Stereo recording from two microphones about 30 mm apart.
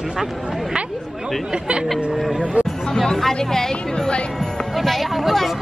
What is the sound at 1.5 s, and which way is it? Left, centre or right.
Speech, right.